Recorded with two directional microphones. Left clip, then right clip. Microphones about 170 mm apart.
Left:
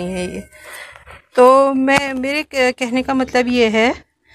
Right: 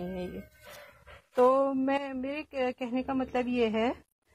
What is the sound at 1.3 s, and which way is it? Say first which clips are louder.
Speech: left 14 dB; 5° left (ahead or behind).